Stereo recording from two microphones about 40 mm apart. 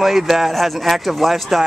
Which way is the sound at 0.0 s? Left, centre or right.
Centre.